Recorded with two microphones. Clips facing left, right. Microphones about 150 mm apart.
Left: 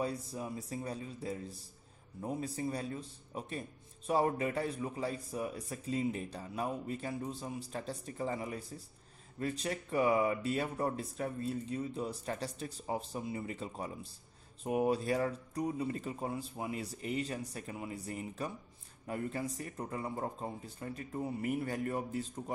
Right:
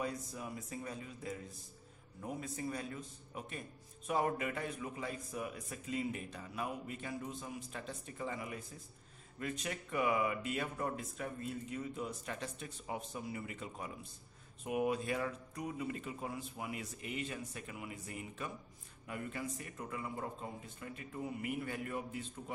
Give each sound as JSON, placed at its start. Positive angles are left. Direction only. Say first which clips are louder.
{"t": 0.0, "sound": "a man's voice", "louder": "left 4 dB", "side_deg": 30}